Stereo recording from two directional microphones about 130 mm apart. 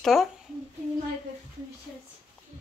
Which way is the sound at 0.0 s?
Centre (ahead or behind).